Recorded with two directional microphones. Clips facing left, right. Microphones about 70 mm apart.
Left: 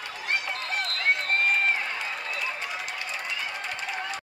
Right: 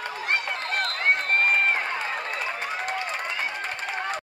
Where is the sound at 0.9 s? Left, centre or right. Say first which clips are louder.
Right 2 dB; right.